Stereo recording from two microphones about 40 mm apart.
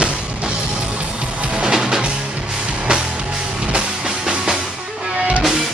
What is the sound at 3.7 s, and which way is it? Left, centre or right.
Music, right.